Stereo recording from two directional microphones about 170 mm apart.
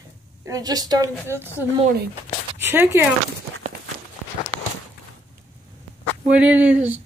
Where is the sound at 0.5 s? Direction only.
20° right (ahead or behind).